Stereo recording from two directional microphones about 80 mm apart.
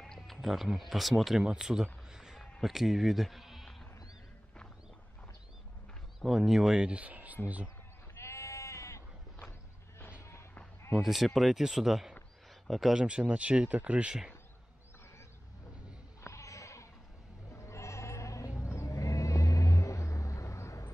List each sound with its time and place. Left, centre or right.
0.0 s speech: centre
2.0 s a sound: centre
2.6 s speech: centre
6.2 s speech: centre
8.1 s sheep: left
10.9 s speech: centre
12.9 s speech: centre
16.3 s sheep: left
17.5 s bleat: left
18.6 s music: left